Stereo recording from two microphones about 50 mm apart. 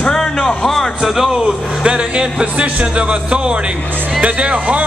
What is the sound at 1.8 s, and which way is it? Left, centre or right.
Music, centre.